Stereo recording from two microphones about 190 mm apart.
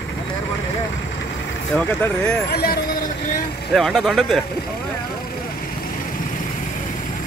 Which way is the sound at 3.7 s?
Centre (ahead or behind).